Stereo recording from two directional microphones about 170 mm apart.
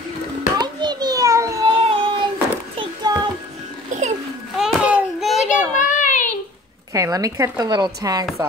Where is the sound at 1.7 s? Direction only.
35° right (ahead or behind).